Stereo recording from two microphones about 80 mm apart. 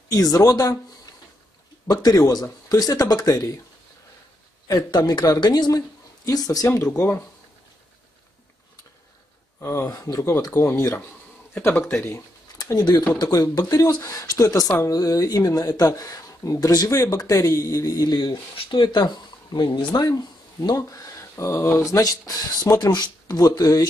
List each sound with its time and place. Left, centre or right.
0.1 s speech: left
1.9 s speech: left
4.6 s a man's voice: left
5.7 s speech: left
9.6 s speech: left
9.8 s speech: left
10.5 s speech: left
13.2 s speech: left
20.0 s speech: left
21.8 s speech: left